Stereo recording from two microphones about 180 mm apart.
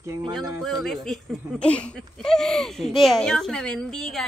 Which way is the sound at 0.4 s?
Centre (ahead or behind).